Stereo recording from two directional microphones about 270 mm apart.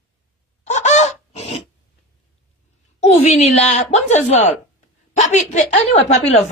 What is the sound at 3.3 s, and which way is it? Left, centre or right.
A woman's voice, left.